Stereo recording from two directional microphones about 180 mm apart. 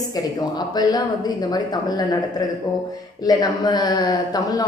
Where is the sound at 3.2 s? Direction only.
20° left (ahead or behind).